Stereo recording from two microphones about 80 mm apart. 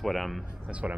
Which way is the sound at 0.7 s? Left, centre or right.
Centre.